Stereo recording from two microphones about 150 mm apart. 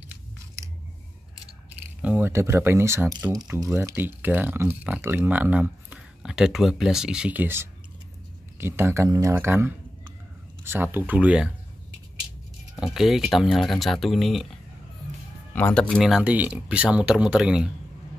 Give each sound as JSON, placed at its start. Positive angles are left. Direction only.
{"t": 2.0, "sound": "speech", "side_deg": -10}
{"t": 12.8, "sound": "speech", "side_deg": 0}
{"t": 15.5, "sound": "speech", "side_deg": 10}